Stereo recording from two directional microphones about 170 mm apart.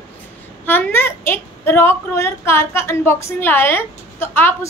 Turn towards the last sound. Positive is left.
turn(degrees=15)  # may be behind; listen again after turning